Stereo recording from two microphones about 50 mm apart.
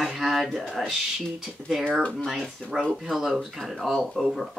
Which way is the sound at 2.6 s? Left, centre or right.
Centre.